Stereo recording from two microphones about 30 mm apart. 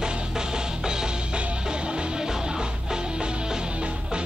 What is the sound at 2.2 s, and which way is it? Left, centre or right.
Music, right.